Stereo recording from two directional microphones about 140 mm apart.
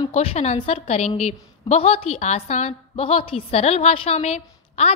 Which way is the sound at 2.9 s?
40° left (ahead or behind).